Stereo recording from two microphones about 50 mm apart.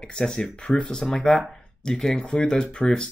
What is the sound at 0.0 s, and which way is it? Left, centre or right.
Speech, centre.